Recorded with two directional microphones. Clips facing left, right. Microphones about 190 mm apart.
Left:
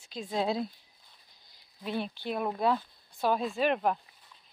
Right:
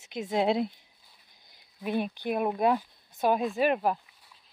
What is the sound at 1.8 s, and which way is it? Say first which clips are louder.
Speech: right 4 dB; 15° right (ahead or behind).